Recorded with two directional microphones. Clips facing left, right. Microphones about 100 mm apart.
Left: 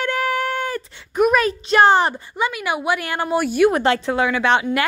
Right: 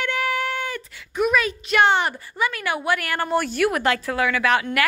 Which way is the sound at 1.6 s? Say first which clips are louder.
Left 5 dB; 35° left (ahead or behind).